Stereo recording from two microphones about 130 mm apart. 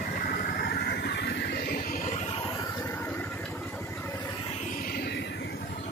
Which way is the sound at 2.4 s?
30° left (ahead or behind).